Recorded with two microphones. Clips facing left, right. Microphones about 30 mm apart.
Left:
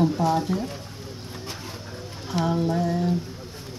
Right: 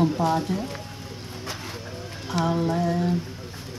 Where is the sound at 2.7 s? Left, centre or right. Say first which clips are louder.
Even; right.